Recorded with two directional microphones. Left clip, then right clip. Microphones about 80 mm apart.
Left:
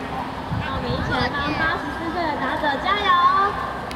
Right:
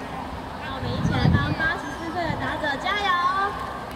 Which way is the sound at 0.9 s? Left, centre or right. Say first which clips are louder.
Left 3 dB; right.